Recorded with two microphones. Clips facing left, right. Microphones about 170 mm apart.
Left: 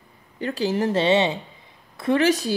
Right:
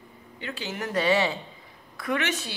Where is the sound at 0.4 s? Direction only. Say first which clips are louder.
Left 11 dB; 35° left (ahead or behind).